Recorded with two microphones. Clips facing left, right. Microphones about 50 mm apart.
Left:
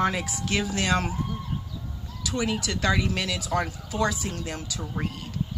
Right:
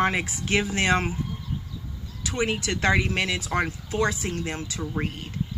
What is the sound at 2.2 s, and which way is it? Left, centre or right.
Speech, right.